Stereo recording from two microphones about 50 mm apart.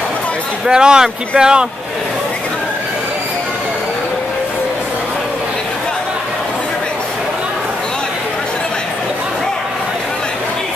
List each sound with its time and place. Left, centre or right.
0.7 s speech: centre